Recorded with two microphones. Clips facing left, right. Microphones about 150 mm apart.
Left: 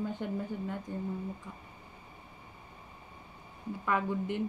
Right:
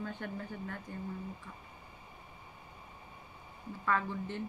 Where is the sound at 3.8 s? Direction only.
15° left (ahead or behind).